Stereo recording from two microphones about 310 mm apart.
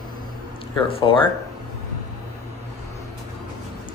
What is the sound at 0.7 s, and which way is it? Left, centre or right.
Speech, centre.